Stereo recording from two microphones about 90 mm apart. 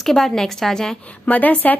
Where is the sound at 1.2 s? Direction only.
15° left (ahead or behind).